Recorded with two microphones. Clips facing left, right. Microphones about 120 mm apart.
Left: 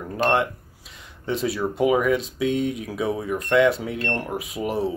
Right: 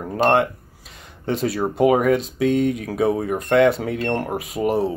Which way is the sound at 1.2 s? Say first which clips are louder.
Right 3 dB; 50° right (ahead or behind).